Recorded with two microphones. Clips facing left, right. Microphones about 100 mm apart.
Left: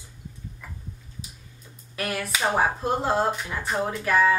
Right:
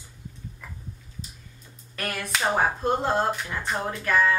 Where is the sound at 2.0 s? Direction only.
5° left (ahead or behind).